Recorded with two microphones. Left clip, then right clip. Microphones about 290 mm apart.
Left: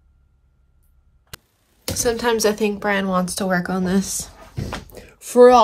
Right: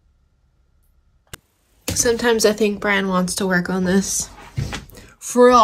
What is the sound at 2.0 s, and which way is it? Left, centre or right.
A woman's voice, centre.